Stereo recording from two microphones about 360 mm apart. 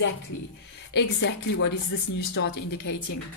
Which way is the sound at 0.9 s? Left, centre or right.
Left.